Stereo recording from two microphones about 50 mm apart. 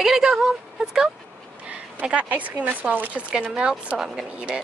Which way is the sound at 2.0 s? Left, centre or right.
Right.